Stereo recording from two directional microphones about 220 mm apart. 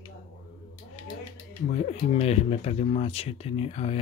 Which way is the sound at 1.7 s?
30° left (ahead or behind).